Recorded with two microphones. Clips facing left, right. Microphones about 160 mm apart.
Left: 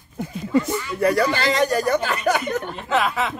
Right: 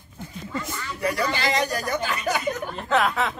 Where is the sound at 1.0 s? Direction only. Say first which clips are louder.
Left 6 dB; 50° left (ahead or behind).